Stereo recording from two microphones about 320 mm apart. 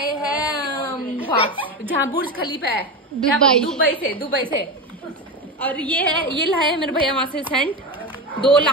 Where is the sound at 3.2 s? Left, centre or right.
Centre.